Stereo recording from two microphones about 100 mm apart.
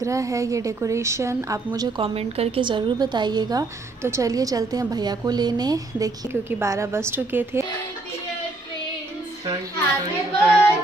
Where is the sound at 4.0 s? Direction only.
30° right (ahead or behind).